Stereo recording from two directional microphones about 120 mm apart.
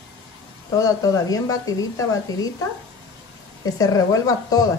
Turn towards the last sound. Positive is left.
turn(degrees=30)  # may be behind; listen again after turning